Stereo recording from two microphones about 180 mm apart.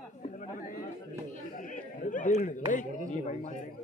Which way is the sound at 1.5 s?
45° left (ahead or behind).